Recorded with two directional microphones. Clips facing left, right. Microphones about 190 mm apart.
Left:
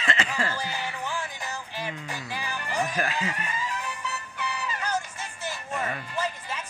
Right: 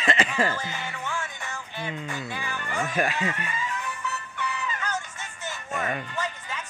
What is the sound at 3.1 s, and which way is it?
Speech, 35° left (ahead or behind).